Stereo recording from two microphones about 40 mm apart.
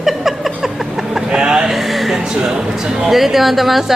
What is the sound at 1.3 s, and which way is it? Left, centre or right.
Vehicle, right.